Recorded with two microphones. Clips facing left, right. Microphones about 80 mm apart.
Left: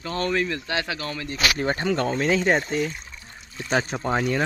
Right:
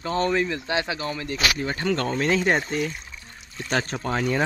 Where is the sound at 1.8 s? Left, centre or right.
Centre.